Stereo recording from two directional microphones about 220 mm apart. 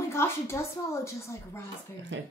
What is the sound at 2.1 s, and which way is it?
Speech, 55° right (ahead or behind).